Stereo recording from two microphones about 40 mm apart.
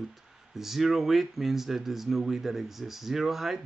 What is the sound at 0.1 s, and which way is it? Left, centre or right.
Speech, centre.